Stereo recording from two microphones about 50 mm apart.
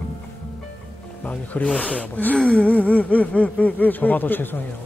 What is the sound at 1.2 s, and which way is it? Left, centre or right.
A man's voice, left.